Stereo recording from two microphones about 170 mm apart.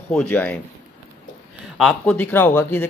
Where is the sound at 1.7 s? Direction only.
Centre (ahead or behind).